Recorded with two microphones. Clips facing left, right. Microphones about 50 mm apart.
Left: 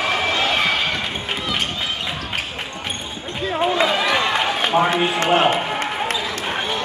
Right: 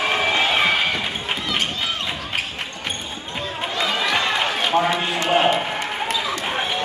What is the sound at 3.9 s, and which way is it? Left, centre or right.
Run, centre.